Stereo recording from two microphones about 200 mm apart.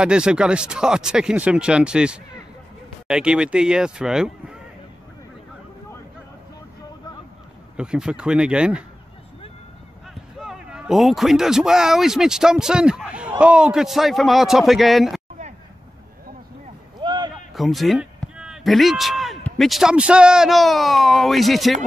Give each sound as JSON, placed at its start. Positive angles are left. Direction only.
{"t": 0.0, "sound": "speech", "side_deg": -5}
{"t": 7.7, "sound": "speech", "side_deg": -5}
{"t": 10.3, "sound": "speech", "side_deg": 0}
{"t": 17.0, "sound": "a sound", "side_deg": -20}
{"t": 17.6, "sound": "speech", "side_deg": 0}